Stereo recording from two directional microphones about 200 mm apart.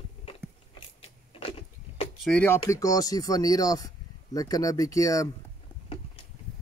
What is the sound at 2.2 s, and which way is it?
Speech, 5° left (ahead or behind).